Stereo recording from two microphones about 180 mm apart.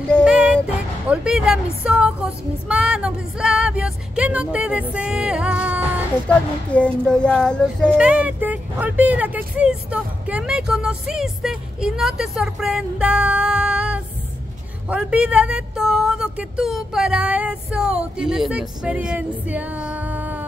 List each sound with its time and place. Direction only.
0.2 s a sound: 5° right (ahead or behind)
1.1 s speech: 5° right (ahead or behind)
2.7 s music: 5° right (ahead or behind)
6.2 s speech: 5° left (ahead or behind)
8.0 s speech: 5° right (ahead or behind)